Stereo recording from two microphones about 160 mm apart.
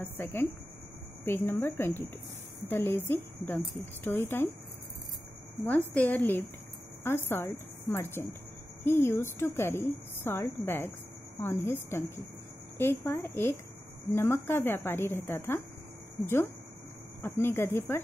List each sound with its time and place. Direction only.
0.2 s a woman's voice: 15° left (ahead or behind)
5.6 s a woman's voice: 10° left (ahead or behind)
17.2 s a woman's voice: 15° left (ahead or behind)